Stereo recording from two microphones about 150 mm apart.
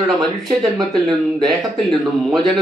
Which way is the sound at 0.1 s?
Centre (ahead or behind).